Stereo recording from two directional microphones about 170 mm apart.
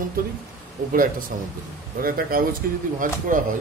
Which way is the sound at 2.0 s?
60° right (ahead or behind).